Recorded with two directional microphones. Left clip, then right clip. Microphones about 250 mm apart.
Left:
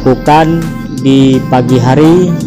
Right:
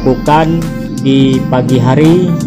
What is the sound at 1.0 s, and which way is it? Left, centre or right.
Speech, centre.